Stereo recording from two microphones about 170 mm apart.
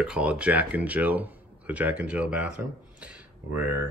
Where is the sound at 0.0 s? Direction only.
5° right (ahead or behind).